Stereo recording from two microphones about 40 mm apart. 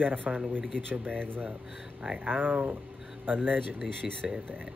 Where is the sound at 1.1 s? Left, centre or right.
Left.